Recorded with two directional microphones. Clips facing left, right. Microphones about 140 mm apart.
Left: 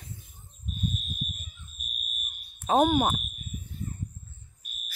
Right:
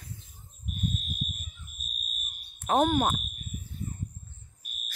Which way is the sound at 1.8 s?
35° right (ahead or behind).